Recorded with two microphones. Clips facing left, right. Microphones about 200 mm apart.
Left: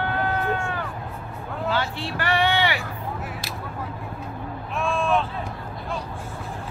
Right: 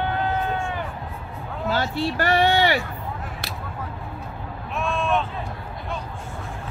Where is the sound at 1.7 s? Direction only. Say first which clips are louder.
Right 4 dB; 40° right (ahead or behind).